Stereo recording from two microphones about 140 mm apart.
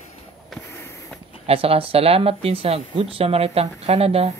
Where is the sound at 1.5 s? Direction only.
40° right (ahead or behind).